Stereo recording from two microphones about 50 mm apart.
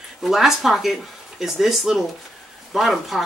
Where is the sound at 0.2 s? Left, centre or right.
Centre.